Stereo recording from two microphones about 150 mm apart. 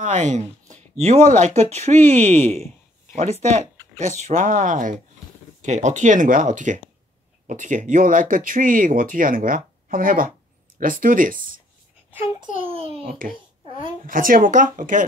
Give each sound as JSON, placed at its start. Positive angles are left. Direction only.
{"t": 0.0, "sound": "speech", "side_deg": -55}
{"t": 3.2, "sound": "speech", "side_deg": -50}
{"t": 12.5, "sound": "a child's voice", "side_deg": -40}
{"t": 14.0, "sound": "speech", "side_deg": -65}